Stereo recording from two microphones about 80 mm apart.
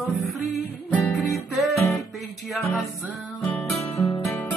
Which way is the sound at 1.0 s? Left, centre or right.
Centre.